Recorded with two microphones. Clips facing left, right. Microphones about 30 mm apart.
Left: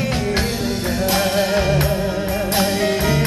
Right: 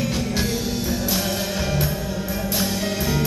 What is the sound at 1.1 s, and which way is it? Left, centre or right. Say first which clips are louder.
Music: left 7 dB; left.